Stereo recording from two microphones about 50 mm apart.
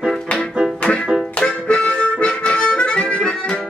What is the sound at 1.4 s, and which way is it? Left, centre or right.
Harmonica, left.